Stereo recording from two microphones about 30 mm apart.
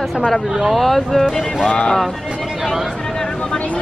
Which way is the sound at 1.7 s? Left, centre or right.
Left.